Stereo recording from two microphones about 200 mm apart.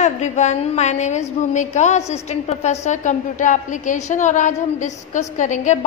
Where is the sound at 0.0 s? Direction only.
35° left (ahead or behind).